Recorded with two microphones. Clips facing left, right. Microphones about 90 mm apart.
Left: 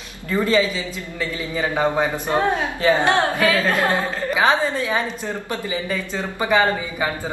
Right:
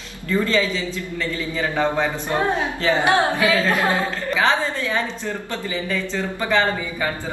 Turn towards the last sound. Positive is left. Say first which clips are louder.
# left 2 dB
turn(degrees=15)  # may be behind; listen again after turning